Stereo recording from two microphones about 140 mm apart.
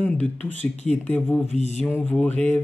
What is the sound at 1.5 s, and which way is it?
Mantra, 50° left (ahead or behind).